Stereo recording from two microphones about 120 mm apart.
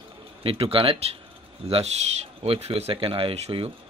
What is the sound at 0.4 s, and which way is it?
Speech, 50° right (ahead or behind).